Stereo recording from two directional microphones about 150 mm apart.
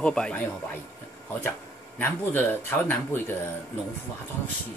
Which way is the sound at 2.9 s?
15° left (ahead or behind).